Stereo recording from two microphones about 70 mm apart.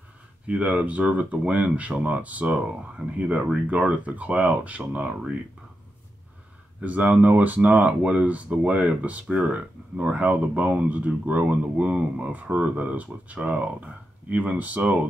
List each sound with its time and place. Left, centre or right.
0.5 s speech: centre
6.8 s speech: right